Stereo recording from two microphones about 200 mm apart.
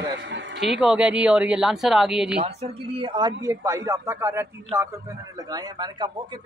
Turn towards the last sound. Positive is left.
turn(degrees=-20)  # may be behind; listen again after turning